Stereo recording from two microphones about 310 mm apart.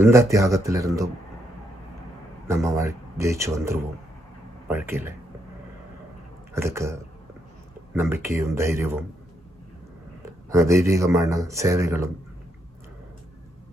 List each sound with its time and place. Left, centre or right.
0.0 s speech: centre
2.4 s speech: centre
6.5 s speech: centre
10.2 s speech: centre